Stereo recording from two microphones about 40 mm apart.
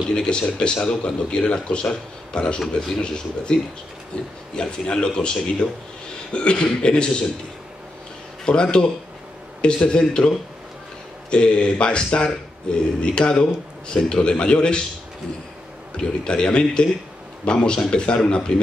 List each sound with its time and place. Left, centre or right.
0.1 s speech: centre
4.6 s speech: left
8.5 s speech: left
16.0 s speech: left